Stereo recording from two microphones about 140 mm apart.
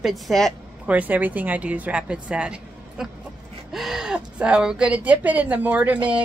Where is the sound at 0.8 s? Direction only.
10° right (ahead or behind).